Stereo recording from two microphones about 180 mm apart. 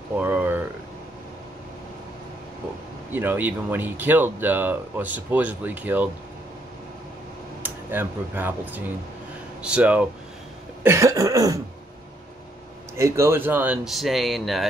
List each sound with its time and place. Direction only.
0.2 s a sound: 10° right (ahead or behind)
3.1 s speech: 10° right (ahead or behind)
7.6 s speech: 10° right (ahead or behind)
12.9 s speech: 15° right (ahead or behind); by 14.7 s centre (ahead or behind)